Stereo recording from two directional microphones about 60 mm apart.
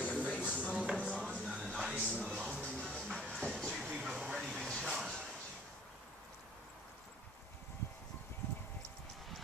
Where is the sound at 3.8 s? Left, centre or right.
Centre.